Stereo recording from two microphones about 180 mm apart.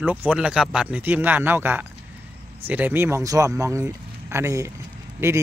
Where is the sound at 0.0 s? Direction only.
10° right (ahead or behind).